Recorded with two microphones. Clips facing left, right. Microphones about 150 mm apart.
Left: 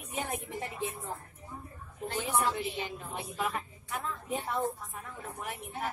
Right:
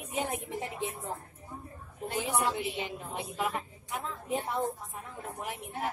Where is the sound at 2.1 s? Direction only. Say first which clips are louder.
Even; 15° right (ahead or behind).